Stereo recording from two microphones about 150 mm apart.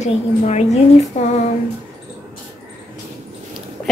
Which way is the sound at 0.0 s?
50° left (ahead or behind).